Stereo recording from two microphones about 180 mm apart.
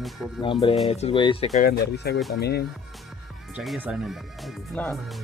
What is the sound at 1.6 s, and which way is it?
Speech, 60° left (ahead or behind).